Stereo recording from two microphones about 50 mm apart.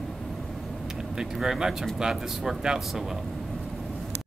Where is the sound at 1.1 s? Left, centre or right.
Centre.